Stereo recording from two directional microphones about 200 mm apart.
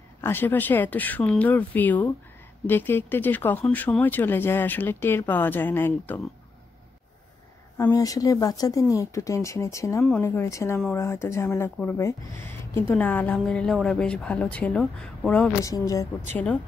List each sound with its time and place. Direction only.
0.2 s speech: 10° left (ahead or behind)
7.7 s speech: 15° left (ahead or behind)
15.6 s speech: 15° left (ahead or behind)